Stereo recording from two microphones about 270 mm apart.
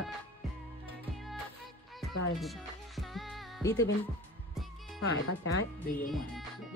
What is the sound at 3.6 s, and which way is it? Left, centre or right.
Speech, centre.